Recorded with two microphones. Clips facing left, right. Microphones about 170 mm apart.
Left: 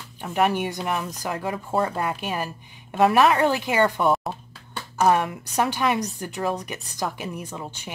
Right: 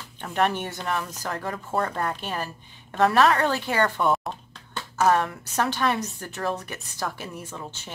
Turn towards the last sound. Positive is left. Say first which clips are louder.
# left 3 dB
turn(degrees=15)  # may be behind; listen again after turning